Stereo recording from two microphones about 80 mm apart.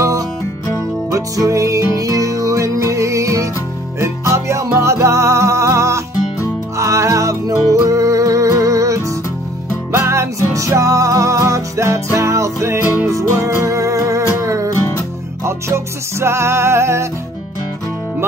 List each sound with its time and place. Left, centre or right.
1.1 s music: right